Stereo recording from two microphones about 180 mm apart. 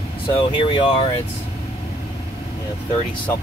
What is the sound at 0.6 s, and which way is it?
Speech, 30° left (ahead or behind).